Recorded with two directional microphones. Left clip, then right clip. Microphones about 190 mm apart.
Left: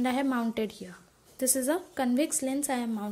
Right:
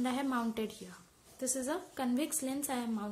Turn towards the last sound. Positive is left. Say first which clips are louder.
# left 6 dB
turn(degrees=25)  # may be behind; listen again after turning